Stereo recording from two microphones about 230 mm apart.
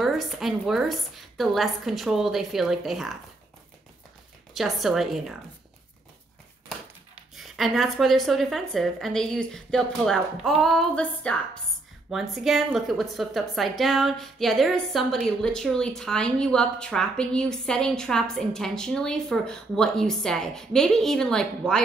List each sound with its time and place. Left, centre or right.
0.0 s speech: centre
4.6 s speech: centre
7.3 s speech: centre